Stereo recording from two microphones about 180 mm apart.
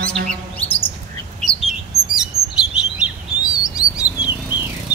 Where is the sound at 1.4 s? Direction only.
Centre (ahead or behind).